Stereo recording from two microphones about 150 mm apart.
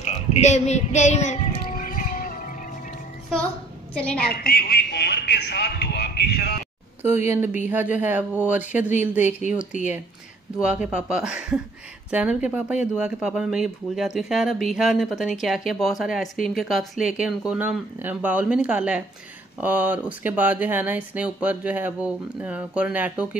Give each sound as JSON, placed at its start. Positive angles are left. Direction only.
{"t": 0.0, "sound": "child singing", "side_deg": 45}
{"t": 3.9, "sound": "a woman's voice", "side_deg": 10}
{"t": 4.2, "sound": "speech", "side_deg": 90}
{"t": 7.2, "sound": "speech", "side_deg": -15}
{"t": 9.7, "sound": "speech", "side_deg": 55}
{"t": 10.6, "sound": "speech", "side_deg": -5}